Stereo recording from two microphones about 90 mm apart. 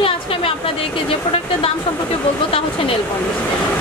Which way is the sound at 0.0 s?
90° left.